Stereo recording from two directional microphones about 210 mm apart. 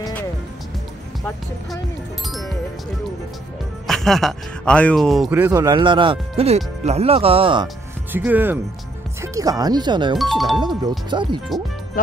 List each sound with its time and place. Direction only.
3.8 s speech: centre (ahead or behind); by 7.6 s 25° right (ahead or behind)
7.6 s speech: 5° right (ahead or behind); by 10.1 s 20° right (ahead or behind)
10.1 s speech: centre (ahead or behind)
11.1 s speech: 20° right (ahead or behind)